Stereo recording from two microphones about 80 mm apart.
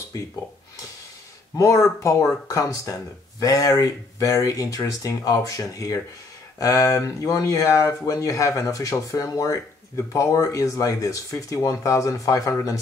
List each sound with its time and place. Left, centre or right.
1.6 s speech: left